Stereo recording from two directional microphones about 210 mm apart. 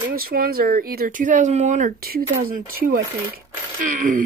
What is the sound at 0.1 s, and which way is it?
Speech, 45° right (ahead or behind).